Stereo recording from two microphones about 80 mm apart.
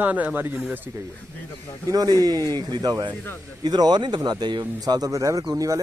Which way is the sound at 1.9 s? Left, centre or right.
Right.